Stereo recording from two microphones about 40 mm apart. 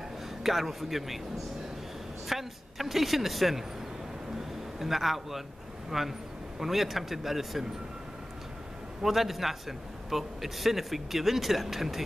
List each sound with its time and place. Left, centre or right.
0.4 s a man's voice: centre
2.2 s a man's voice: centre
4.7 s a man's voice: centre
9.0 s a man's voice: centre